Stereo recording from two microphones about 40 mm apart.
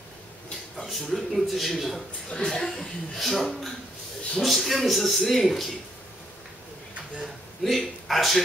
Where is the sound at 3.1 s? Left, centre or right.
Centre.